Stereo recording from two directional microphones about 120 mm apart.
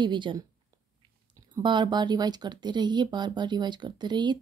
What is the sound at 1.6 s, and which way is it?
Speech, 40° right (ahead or behind).